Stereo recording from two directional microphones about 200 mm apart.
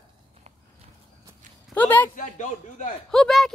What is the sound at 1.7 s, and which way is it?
Speech, 10° left (ahead or behind).